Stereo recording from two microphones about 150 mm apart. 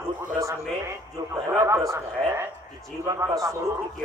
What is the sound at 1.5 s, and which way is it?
A man's voice, 20° right (ahead or behind).